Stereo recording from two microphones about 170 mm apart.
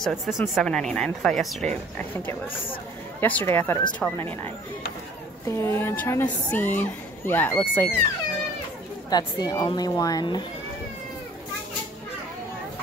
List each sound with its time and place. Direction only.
0.0 s a woman's voice: centre (ahead or behind)
2.0 s a woman's voice: 10° left (ahead or behind)
5.5 s a woman's voice: 15° left (ahead or behind)
9.1 s a woman's voice: 20° left (ahead or behind)